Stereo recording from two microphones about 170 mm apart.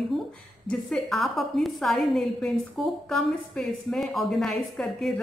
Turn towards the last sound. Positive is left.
turn(degrees=0)  # may be behind; listen again after turning